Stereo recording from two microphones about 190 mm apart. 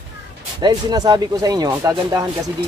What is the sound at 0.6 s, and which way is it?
Speech, 20° right (ahead or behind).